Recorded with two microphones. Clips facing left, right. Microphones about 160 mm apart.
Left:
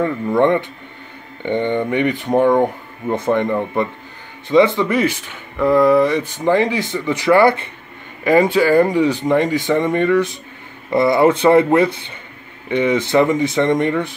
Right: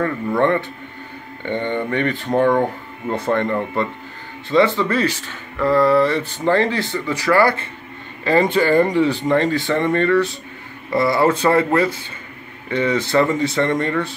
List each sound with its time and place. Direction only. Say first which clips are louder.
0.0 s speech: left 3 dB; 15° left (ahead or behind)